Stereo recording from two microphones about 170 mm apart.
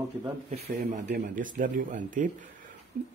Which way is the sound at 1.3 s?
50° right (ahead or behind).